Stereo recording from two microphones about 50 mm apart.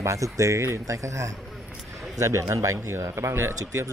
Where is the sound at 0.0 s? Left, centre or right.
Right.